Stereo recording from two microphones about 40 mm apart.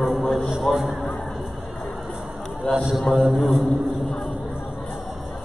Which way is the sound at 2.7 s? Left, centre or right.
Left.